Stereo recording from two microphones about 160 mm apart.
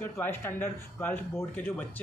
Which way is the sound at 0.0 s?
15° left (ahead or behind).